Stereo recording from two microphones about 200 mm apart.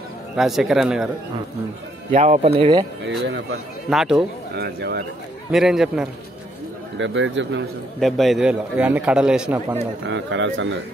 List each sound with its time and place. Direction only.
0.4 s a man's voice: centre (ahead or behind)
2.1 s speech: 35° right (ahead or behind)
3.1 s speech: 60° right (ahead or behind)
3.9 s a man's voice: centre (ahead or behind)
4.6 s speech: 55° right (ahead or behind)
5.5 s a man's voice: centre (ahead or behind)
7.0 s speech: 70° right (ahead or behind)
8.0 s a man's voice: centre (ahead or behind)
10.0 s speech: 65° right (ahead or behind)